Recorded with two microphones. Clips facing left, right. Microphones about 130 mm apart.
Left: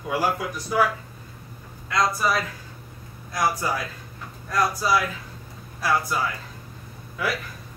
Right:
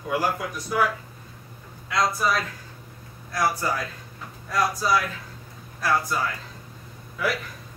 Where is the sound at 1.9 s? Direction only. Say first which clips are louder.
Left 1 dB; centre (ahead or behind).